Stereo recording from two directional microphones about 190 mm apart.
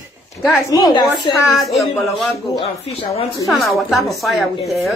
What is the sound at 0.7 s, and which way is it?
Speech, 25° left (ahead or behind).